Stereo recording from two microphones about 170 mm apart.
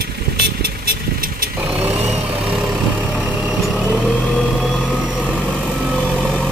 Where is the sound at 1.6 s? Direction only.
10° right (ahead or behind).